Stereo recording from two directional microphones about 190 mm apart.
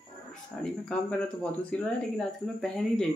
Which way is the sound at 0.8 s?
5° left (ahead or behind).